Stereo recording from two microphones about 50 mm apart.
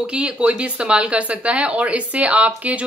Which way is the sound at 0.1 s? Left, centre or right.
Right.